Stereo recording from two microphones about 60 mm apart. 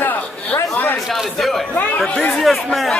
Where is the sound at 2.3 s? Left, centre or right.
Centre.